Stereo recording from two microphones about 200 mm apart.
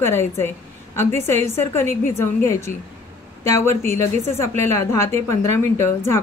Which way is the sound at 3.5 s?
10° left (ahead or behind).